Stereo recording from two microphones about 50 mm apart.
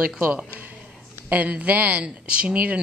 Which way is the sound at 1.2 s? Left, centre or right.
Right.